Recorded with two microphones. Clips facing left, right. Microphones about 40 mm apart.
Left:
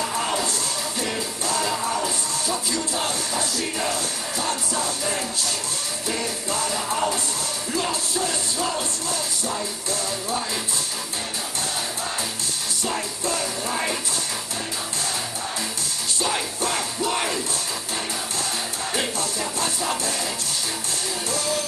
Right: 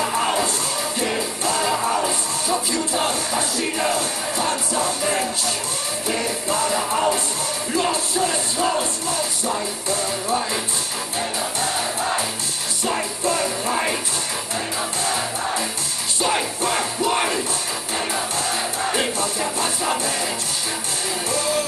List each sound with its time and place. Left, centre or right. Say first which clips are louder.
0.0 s music: right 4 dB; right
12.8 s music: right 5 dB; right
16.2 s music: right 4 dB; right
18.8 s music: right 4 dB; right